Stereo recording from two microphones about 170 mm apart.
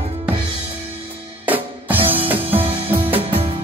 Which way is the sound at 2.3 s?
10° right (ahead or behind).